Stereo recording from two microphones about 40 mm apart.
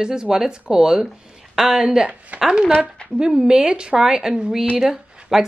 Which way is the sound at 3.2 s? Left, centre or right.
Centre.